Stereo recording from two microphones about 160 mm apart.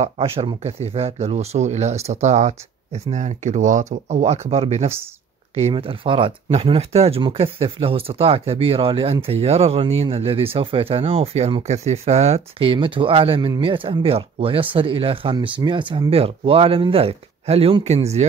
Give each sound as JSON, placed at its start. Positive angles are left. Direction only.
{"t": 0.0, "sound": "speech", "side_deg": -35}